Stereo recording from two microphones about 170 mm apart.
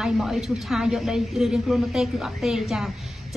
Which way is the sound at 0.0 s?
Centre (ahead or behind).